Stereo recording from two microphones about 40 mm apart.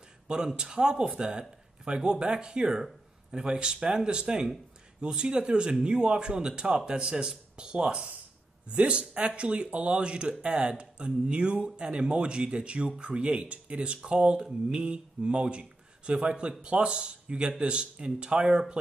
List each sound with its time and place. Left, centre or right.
0.3 s speech: right